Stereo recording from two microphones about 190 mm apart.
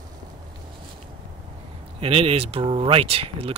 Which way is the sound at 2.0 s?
30° right (ahead or behind).